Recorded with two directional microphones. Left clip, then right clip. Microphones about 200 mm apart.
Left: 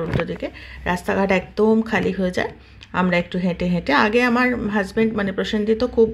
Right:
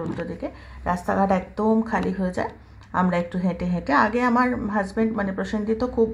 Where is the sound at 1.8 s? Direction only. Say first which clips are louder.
Left 4 dB; 40° left (ahead or behind).